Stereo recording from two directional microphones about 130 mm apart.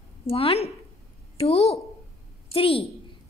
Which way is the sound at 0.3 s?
50° left (ahead or behind).